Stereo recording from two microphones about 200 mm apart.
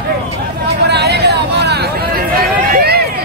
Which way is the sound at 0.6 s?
55° right (ahead or behind).